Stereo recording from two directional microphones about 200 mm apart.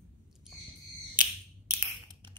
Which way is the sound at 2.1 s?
20° right (ahead or behind).